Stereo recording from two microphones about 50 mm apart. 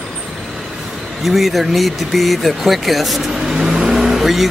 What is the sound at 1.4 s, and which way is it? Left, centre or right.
Speech, centre.